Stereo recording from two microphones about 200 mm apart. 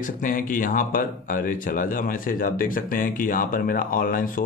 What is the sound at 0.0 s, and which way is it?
Speech, 40° left (ahead or behind).